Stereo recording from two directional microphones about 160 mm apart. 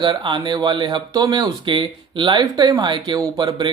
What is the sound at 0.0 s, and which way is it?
Speech, 30° right (ahead or behind).